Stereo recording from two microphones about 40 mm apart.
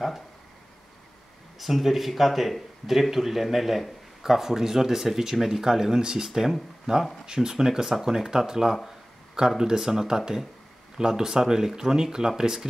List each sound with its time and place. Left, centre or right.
1.6 s speech: centre
8.8 s a sound: centre
9.6 s speech: centre